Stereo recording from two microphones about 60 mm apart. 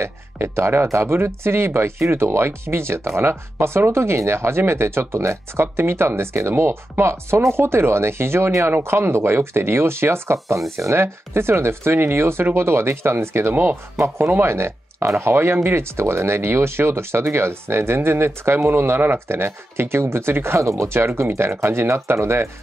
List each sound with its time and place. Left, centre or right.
0.0 s speech: right